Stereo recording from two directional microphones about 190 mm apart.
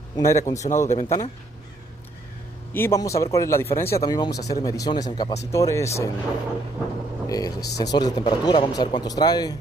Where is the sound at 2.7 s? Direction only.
15° left (ahead or behind).